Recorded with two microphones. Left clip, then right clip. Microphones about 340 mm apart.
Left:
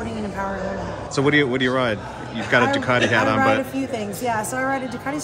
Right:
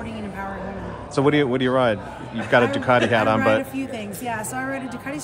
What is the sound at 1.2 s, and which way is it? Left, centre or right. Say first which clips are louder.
Speech: left 1 dB; centre.